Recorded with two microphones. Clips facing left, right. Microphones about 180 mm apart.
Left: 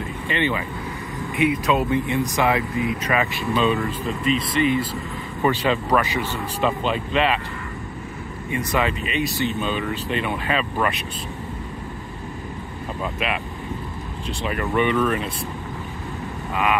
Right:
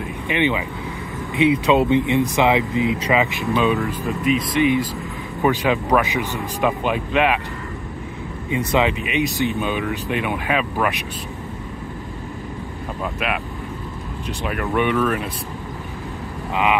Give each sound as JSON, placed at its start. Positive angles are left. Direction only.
{"t": 0.3, "sound": "speech", "side_deg": -15}
{"t": 1.4, "sound": "speech", "side_deg": -25}
{"t": 8.5, "sound": "speech", "side_deg": -15}
{"t": 13.0, "sound": "speech", "side_deg": -5}
{"t": 14.4, "sound": "speech", "side_deg": -5}